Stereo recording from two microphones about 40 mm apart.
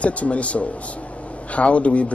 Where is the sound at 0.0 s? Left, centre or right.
Left.